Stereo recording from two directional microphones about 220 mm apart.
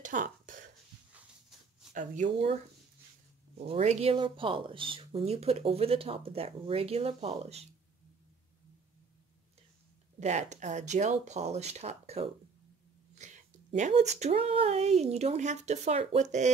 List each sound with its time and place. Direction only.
0.0 s a sound: 35° right (ahead or behind)
3.5 s speech: 30° right (ahead or behind)
10.2 s speech: 30° right (ahead or behind)